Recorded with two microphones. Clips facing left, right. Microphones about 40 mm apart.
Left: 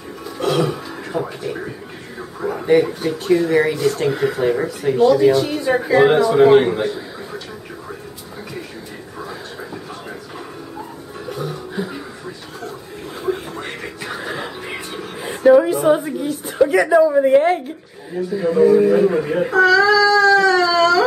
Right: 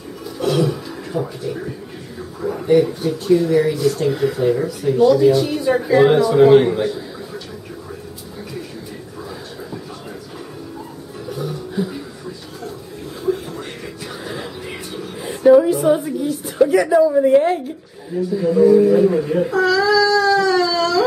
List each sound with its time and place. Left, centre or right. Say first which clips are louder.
0.5 s speech: even; left
2.6 s a man's voice: even; left
3.4 s speech: even; left
4.1 s speech: even; centre
4.4 s speech: right 1 dB; left
5.3 s speech: even; centre
11.3 s music: right 2 dB; centre
13.2 s music: right 1 dB; left
16.3 s a man's voice: right 1 dB; centre; by 19.5 s left
19.5 s cat: left 4 dB; centre